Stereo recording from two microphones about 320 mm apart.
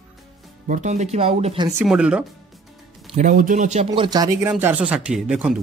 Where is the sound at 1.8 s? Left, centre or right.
Centre.